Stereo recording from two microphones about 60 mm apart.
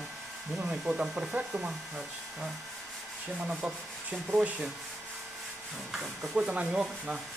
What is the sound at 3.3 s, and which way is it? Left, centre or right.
Sanding, right.